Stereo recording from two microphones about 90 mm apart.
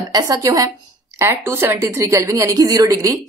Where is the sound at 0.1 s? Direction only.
45° right (ahead or behind).